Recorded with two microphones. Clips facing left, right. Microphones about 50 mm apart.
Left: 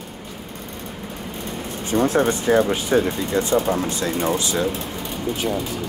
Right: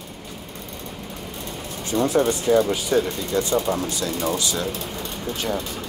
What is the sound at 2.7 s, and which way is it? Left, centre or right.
Speech, left.